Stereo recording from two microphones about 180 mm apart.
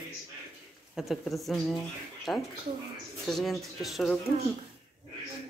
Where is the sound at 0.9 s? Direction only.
Centre (ahead or behind).